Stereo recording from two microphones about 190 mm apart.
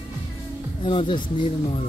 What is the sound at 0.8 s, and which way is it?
Speech, 25° left (ahead or behind).